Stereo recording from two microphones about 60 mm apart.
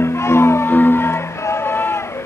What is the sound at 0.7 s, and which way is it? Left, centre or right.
Music, left.